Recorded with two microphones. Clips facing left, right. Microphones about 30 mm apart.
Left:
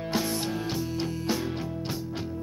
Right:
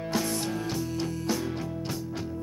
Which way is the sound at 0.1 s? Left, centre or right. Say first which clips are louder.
Even; centre.